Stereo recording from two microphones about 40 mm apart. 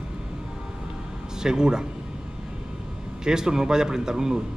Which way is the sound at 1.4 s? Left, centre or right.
Centre.